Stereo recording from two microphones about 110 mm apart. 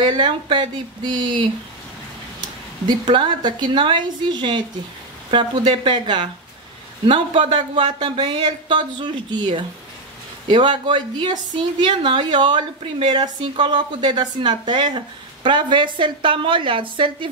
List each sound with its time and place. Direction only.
0.0 s a woman's voice: 45° right (ahead or behind)
3.1 s a woman's voice: 45° right (ahead or behind)